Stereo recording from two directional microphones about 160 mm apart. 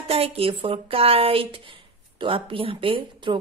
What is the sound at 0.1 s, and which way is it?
Speech, 35° right (ahead or behind).